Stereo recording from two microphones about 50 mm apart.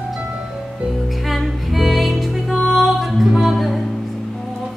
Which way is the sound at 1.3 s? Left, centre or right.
Centre.